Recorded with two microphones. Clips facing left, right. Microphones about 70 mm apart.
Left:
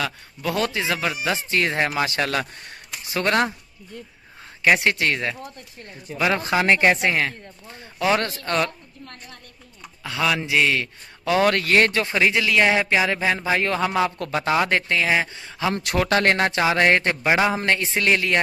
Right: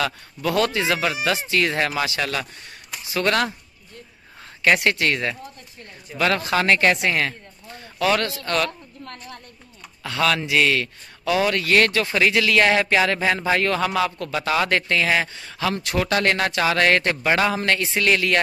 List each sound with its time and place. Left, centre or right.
0.0 s speech: centre
1.3 s speech: left
2.0 s speech: left
4.6 s speech: centre
8.2 s speech: left
9.0 s a woman's voice: right
10.0 s speech: centre
11.2 s speech: left
14.1 s speech: left
14.6 s speech: centre
15.8 s speech: left
16.1 s speech: left